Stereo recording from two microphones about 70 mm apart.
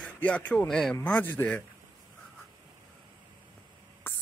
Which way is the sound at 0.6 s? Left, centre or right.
Centre.